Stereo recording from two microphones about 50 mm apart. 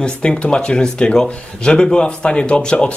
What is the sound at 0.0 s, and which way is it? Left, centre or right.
Speech, left.